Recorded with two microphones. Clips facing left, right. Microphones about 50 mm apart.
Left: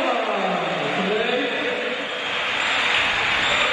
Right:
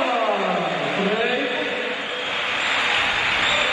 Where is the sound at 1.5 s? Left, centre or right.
Left.